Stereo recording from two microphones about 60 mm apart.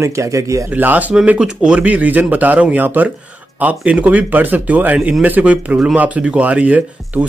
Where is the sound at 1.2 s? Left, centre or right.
Centre.